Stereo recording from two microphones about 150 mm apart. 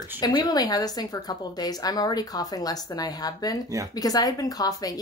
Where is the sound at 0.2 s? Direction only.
30° left (ahead or behind).